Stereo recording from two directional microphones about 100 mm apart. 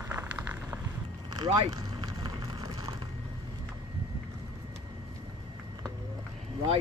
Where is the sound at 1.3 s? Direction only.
45° right (ahead or behind).